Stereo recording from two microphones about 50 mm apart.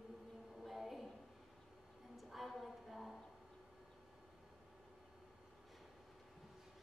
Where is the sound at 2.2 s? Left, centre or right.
Centre.